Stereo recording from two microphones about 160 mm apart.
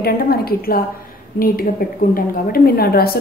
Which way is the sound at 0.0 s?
70° left (ahead or behind).